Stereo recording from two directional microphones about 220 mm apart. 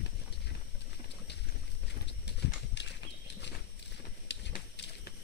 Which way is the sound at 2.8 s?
50° left (ahead or behind).